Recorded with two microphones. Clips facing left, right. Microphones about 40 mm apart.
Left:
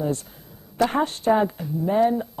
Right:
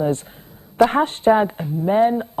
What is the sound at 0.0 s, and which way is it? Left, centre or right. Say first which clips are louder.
A woman's voice: right 5 dB; right.